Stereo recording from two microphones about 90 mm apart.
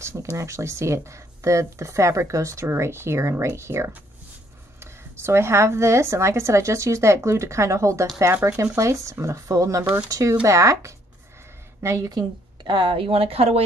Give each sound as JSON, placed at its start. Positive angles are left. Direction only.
{"t": 0.0, "sound": "a woman's voice", "side_deg": -35}
{"t": 12.1, "sound": "a woman's voice", "side_deg": -55}